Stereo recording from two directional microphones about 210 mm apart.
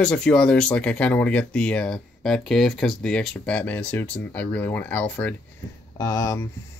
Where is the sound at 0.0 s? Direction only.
5° left (ahead or behind).